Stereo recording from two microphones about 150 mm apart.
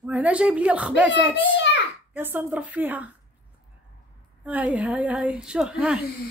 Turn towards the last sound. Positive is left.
turn(degrees=-5)  # may be behind; listen again after turning